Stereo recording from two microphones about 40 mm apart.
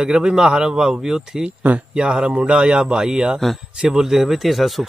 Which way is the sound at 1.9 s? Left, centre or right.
Right.